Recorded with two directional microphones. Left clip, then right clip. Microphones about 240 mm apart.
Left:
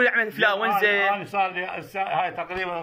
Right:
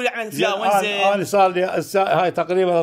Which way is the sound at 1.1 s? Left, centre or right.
Right.